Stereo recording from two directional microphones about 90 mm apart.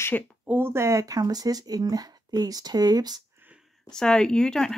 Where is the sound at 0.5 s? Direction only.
25° right (ahead or behind); by 3.2 s 50° right (ahead or behind).